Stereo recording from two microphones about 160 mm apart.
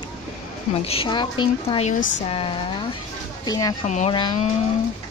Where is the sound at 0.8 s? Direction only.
35° left (ahead or behind).